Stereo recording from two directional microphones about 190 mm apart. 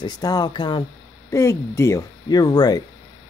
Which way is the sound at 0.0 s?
20° left (ahead or behind).